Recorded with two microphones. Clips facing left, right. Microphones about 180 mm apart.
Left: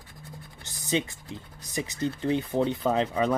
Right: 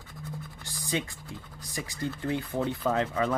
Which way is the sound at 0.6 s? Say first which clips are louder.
Left 4 dB; 20° left (ahead or behind).